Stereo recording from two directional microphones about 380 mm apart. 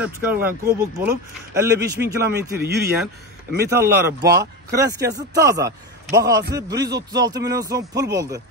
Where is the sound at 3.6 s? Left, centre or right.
Centre.